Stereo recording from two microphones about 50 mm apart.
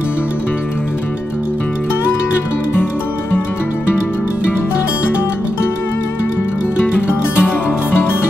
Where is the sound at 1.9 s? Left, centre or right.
Left.